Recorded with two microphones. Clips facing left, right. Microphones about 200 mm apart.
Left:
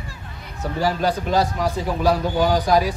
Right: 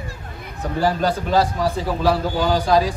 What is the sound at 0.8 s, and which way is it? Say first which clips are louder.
A man's voice: right 1 dB; 10° left (ahead or behind).